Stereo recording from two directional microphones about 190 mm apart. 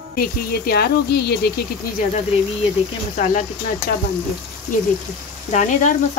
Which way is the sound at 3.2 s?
40° left (ahead or behind).